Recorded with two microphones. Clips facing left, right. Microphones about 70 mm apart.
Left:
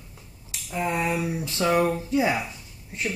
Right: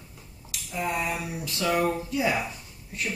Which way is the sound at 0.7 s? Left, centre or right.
Left.